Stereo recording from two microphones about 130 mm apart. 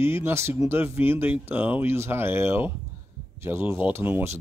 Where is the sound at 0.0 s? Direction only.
20° right (ahead or behind).